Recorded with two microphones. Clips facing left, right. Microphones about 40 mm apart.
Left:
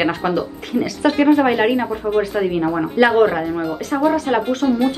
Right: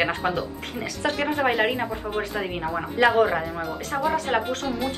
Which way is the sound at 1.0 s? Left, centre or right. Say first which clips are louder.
Left 8 dB; left.